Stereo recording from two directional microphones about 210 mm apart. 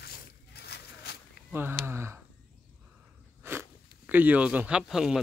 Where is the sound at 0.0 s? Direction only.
50° left (ahead or behind).